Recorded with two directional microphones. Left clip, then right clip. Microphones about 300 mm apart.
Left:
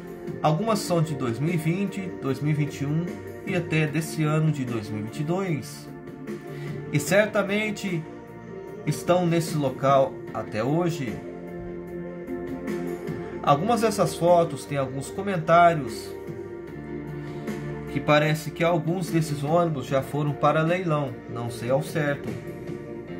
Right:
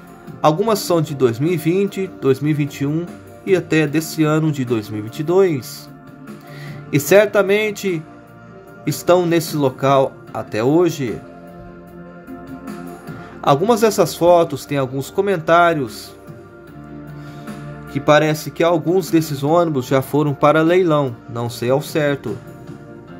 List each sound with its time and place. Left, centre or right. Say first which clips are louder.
0.4 s speech: right 9 dB; right
6.9 s speech: right 9 dB; right
13.4 s speech: right 7 dB; right
17.9 s speech: right 8 dB; right